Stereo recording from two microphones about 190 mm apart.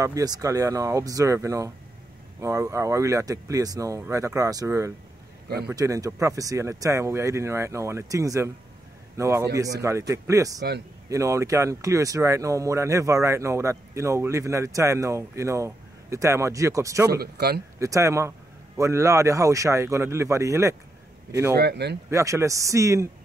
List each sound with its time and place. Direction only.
0.0 s a man's voice: 20° right (ahead or behind)
17.1 s speech: 55° right (ahead or behind)
17.7 s speech: 15° right (ahead or behind)
21.5 s speech: 60° right (ahead or behind)
22.1 s speech: 15° right (ahead or behind)